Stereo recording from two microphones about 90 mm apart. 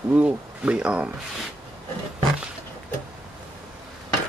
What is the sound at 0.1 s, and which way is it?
Speech, 15° right (ahead or behind).